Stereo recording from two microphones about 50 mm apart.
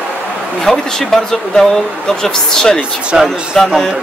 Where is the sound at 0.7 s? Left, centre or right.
Centre.